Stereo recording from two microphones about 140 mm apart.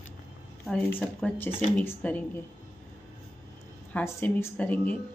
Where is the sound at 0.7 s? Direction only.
10° left (ahead or behind).